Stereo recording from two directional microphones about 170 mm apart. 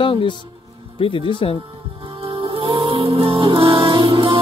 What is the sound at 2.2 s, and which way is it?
Music, 30° right (ahead or behind).